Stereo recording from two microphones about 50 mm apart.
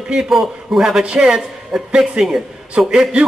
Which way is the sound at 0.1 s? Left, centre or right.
Centre.